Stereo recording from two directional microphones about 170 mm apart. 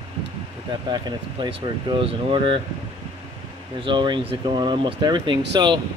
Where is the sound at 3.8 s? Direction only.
25° right (ahead or behind).